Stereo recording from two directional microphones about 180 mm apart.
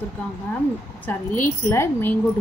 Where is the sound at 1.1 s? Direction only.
10° left (ahead or behind).